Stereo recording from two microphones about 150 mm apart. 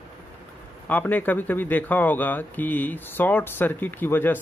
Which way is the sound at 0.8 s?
10° left (ahead or behind).